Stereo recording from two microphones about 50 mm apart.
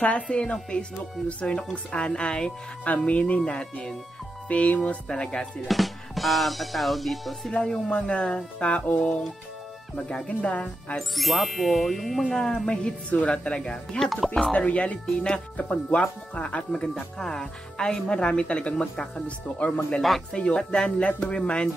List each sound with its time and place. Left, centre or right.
0.0 s speech: left
5.0 s speech: centre
5.7 s music: centre
7.6 s speech: centre
7.9 s speech: left
11.1 s music: centre
12.6 s speech: left; by 14.5 s centre
14.5 s speech: left